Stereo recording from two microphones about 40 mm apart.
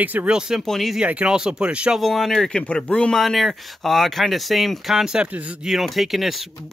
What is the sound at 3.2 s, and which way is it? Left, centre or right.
Speech, centre.